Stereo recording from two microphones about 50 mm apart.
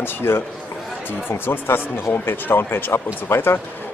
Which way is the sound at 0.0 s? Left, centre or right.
Left.